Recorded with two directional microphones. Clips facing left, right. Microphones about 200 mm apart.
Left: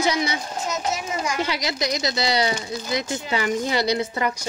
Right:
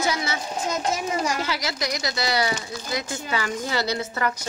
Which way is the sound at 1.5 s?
20° left (ahead or behind).